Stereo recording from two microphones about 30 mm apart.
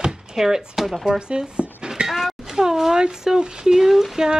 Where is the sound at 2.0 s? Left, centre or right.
Centre.